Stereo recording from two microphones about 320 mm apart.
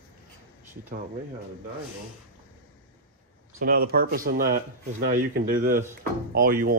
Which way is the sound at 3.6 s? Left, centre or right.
Right.